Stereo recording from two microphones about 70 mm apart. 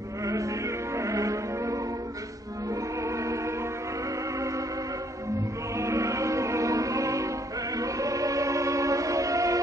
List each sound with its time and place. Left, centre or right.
0.2 s music: right
5.8 s music: right